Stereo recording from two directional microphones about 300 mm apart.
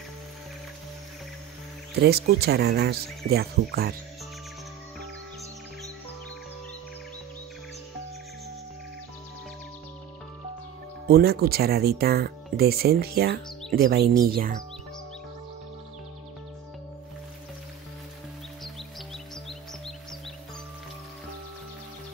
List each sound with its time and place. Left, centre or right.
2.0 s speech: right
11.1 s speech: right